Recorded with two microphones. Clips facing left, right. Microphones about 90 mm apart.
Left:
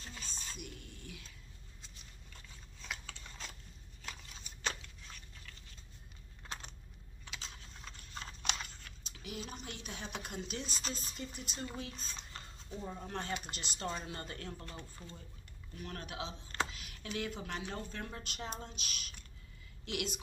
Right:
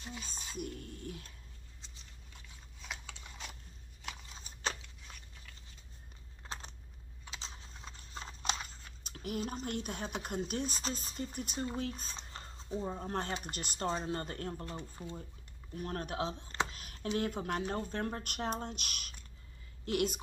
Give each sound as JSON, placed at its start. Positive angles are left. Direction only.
{"t": 0.0, "sound": "a sound", "side_deg": -10}
{"t": 0.6, "sound": "speech", "side_deg": -40}
{"t": 2.9, "sound": "biting", "side_deg": -10}
{"t": 4.3, "sound": "a sound", "side_deg": -35}
{"t": 5.1, "sound": "a sound", "side_deg": -10}
{"t": 7.2, "sound": "a sound", "side_deg": -30}
{"t": 9.0, "sound": "speech", "side_deg": -50}
{"t": 12.2, "sound": "speech", "side_deg": -30}
{"t": 14.5, "sound": "speech", "side_deg": -30}
{"t": 14.8, "sound": "speech", "side_deg": -20}
{"t": 15.7, "sound": "speech", "side_deg": -40}
{"t": 16.7, "sound": "computer keyboard", "side_deg": -40}
{"t": 17.1, "sound": "speech", "side_deg": -45}
{"t": 19.8, "sound": "a woman's voice", "side_deg": -40}